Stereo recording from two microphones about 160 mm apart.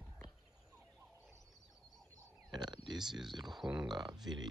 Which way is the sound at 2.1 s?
25° right (ahead or behind).